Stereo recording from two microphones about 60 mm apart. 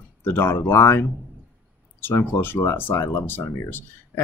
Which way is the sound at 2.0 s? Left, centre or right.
Left.